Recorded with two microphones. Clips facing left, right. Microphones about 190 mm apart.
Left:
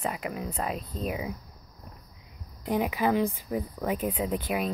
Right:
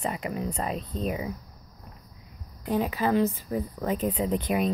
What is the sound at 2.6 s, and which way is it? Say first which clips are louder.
Speech: even; 15° left (ahead or behind).